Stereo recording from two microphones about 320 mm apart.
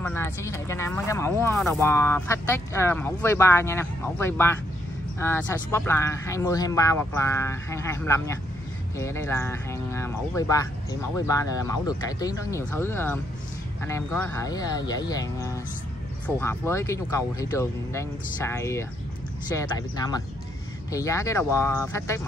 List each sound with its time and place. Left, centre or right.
0.0 s speech: centre
20.9 s speech: centre